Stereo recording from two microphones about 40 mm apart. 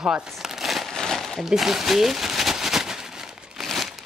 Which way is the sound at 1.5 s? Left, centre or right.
Centre.